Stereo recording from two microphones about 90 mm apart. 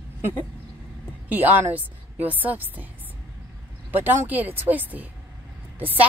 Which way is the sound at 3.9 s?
25° right (ahead or behind).